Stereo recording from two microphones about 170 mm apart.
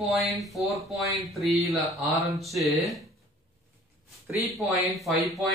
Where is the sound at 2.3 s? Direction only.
Centre (ahead or behind).